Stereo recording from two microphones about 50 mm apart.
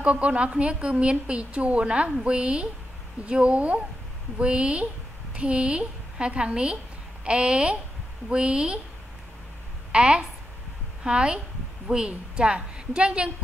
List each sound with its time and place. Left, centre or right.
0.0 s a woman's voice: right
9.9 s a woman's voice: centre